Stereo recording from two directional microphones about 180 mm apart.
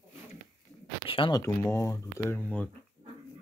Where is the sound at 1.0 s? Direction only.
30° left (ahead or behind).